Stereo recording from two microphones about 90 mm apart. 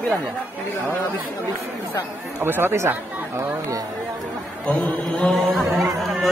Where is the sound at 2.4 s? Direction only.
25° right (ahead or behind).